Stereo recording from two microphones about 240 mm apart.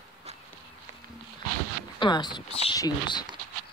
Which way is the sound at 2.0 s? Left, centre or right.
Centre.